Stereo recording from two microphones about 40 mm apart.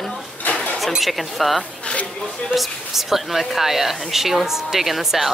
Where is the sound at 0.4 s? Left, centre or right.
Left.